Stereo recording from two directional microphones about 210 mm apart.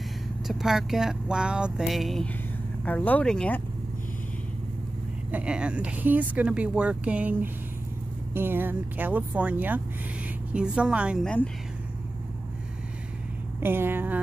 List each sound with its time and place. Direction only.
0.5 s speech: centre (ahead or behind)
5.3 s speech: 5° right (ahead or behind)
11.2 s speech: 5° left (ahead or behind)
13.6 s speech: 10° right (ahead or behind)